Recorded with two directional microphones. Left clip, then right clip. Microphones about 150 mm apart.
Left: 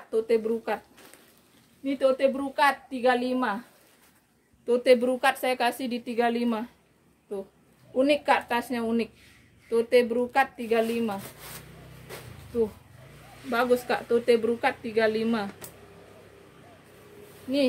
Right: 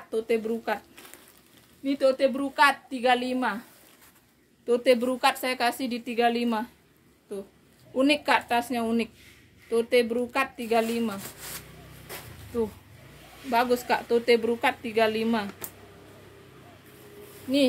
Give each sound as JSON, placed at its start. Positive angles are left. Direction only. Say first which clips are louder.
{"t": 0.1, "sound": "a woman's voice", "louder": "left 2 dB", "side_deg": 25}
{"t": 1.9, "sound": "a woman's voice", "louder": "even", "side_deg": 20}
{"t": 4.6, "sound": "a woman's voice", "louder": "left 1 dB", "side_deg": 35}
{"t": 7.9, "sound": "a woman's voice", "louder": "even", "side_deg": 25}
{"t": 13.5, "sound": "a woman's voice", "louder": "right 1 dB", "side_deg": 30}